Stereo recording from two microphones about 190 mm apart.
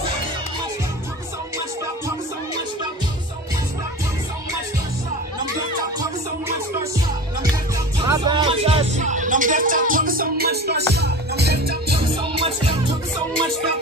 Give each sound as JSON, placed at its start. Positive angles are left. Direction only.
{"t": 8.0, "sound": "music", "side_deg": -25}
{"t": 12.0, "sound": "music", "side_deg": -30}